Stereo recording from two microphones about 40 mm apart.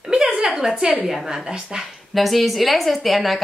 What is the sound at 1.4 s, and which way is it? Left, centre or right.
Speech, centre.